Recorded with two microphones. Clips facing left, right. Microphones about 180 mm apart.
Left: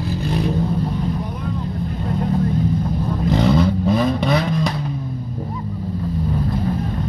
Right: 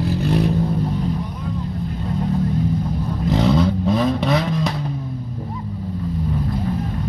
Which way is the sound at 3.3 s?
Centre (ahead or behind).